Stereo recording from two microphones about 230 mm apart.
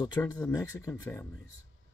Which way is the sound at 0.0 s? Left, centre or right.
Centre.